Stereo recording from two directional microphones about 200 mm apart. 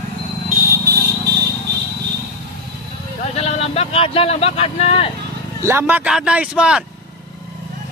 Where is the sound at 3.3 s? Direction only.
30° left (ahead or behind).